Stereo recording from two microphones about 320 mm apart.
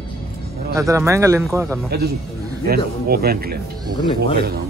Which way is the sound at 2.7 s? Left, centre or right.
Right.